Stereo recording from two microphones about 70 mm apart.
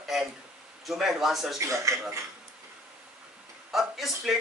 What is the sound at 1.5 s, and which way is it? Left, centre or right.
Speech, right.